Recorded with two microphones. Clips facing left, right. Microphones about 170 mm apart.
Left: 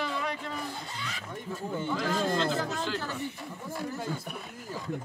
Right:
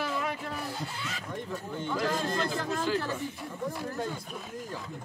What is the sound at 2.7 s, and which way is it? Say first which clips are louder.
Speech: right 3 dB; centre (ahead or behind).